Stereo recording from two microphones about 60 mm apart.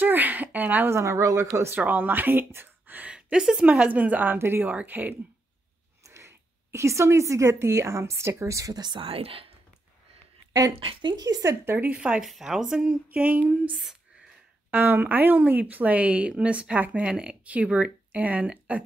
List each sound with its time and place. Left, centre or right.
0.0 s a sound: right
0.8 s speech: right
1.9 s a woman's voice: right; by 3.6 s centre
3.6 s a woman's voice: right
4.6 s speech: right
6.0 s a woman's voice: right
11.1 s speech: right
11.6 s speech: right
11.9 s a woman's voice: centre
12.2 s a woman's voice: centre
12.8 s a woman's voice: right
14.7 s a woman's voice: right